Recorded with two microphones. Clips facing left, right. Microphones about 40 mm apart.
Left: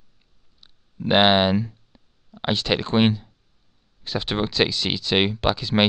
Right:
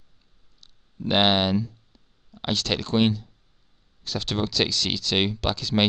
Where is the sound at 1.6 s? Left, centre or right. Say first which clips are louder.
Left 2 dB; left.